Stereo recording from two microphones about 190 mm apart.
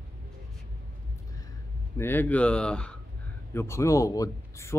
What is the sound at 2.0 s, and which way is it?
Speech, 10° left (ahead or behind).